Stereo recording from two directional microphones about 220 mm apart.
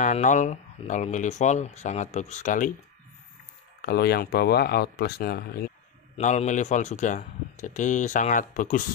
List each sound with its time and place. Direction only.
0.0 s speech: 35° left (ahead or behind)
3.8 s speech: 45° left (ahead or behind)
6.1 s speech: 30° left (ahead or behind)